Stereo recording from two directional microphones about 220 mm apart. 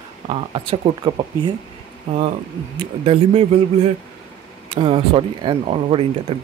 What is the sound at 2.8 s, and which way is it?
Speech, 25° right (ahead or behind).